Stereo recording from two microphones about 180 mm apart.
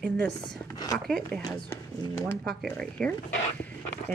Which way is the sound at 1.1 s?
5° left (ahead or behind).